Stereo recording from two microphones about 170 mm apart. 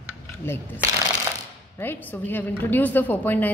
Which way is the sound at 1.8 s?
10° left (ahead or behind).